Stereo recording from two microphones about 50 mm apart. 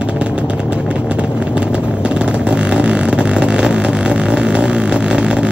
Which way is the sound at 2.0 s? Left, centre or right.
Right.